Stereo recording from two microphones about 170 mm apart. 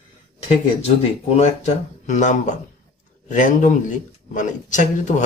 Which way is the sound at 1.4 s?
40° left (ahead or behind).